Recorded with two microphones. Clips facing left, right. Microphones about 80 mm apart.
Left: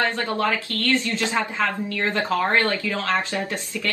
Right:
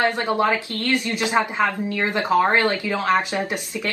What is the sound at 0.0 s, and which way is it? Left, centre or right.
Speech, right.